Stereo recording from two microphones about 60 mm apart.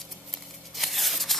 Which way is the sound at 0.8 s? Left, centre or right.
Centre.